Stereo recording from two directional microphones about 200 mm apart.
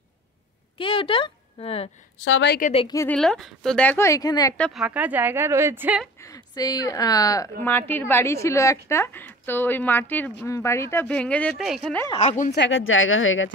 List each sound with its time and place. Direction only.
0.7 s a woman's voice: 25° left (ahead or behind)
2.2 s a woman's voice: 60° left (ahead or behind)
2.7 s a woman's voice: 25° left (ahead or behind)
3.0 s speech: 5° left (ahead or behind)
4.6 s speech: 5° left (ahead or behind)
4.8 s a woman's voice: 5° right (ahead or behind)
6.2 s speech: 20° left (ahead or behind)
12.2 s speech: 35° left (ahead or behind)
12.5 s speech: 70° left (ahead or behind)